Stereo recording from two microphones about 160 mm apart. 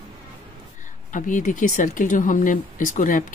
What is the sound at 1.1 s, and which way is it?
Speech, 55° left (ahead or behind).